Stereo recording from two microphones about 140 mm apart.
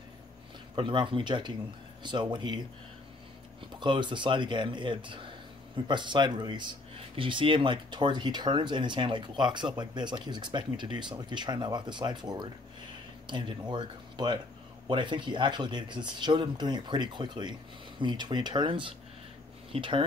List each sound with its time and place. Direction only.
0.7 s speech: 35° right (ahead or behind)
3.8 s speech: 35° right (ahead or behind)